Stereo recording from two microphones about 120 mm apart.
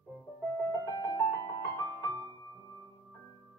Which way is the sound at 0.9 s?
30° left (ahead or behind).